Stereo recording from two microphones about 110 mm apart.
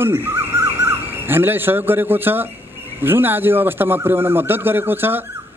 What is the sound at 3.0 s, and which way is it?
A man's voice, 20° right (ahead or behind).